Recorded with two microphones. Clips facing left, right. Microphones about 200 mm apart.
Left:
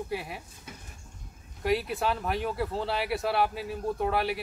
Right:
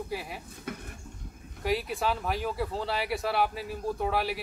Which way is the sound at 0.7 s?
60° right (ahead or behind).